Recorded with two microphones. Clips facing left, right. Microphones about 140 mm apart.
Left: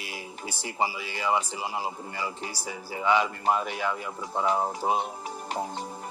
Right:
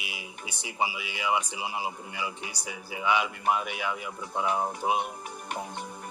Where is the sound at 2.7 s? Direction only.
10° right (ahead or behind).